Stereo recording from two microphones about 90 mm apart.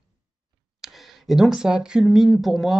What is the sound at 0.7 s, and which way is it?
Speech, centre (ahead or behind).